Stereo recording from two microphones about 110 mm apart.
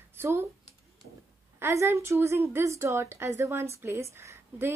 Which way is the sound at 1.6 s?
25° right (ahead or behind).